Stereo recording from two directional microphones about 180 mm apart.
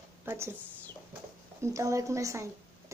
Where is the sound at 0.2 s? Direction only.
15° right (ahead or behind).